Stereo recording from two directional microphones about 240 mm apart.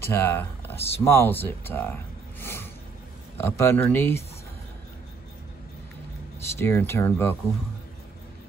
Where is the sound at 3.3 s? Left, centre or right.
Centre.